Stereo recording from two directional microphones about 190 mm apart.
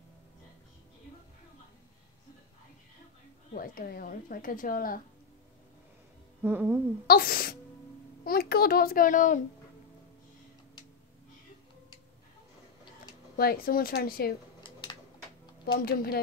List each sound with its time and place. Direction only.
3.5 s speech: 50° left (ahead or behind)
6.4 s speech: 10° right (ahead or behind)
7.1 s speech: 50° left (ahead or behind)
13.4 s speech: 50° left (ahead or behind)
14.6 s a sound: 25° left (ahead or behind)
15.8 s speech: 55° left (ahead or behind)